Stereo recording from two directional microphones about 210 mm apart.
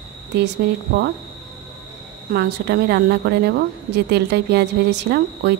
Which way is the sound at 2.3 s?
50° right (ahead or behind).